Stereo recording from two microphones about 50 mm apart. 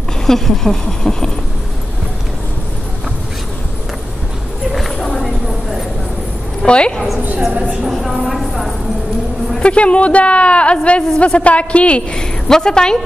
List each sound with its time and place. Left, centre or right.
0.3 s speech: centre
4.7 s a sound: centre
6.6 s a woman's voice: left
7.9 s a woman's voice: centre
9.6 s a woman's voice: left